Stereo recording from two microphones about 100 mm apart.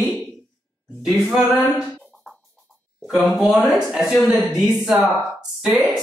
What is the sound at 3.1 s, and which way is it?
Speech, 5° right (ahead or behind).